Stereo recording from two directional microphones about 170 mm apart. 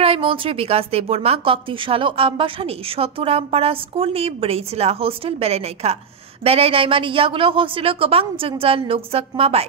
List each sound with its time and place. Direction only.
0.0 s a woman's voice: 35° right (ahead or behind)